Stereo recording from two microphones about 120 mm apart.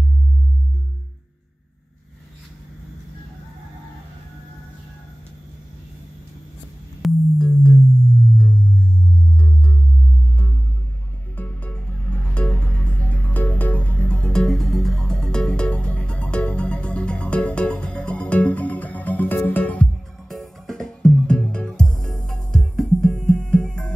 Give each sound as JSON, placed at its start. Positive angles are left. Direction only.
{"t": 7.0, "sound": "music", "side_deg": 10}
{"t": 11.3, "sound": "music", "side_deg": 15}
{"t": 20.2, "sound": "music", "side_deg": 5}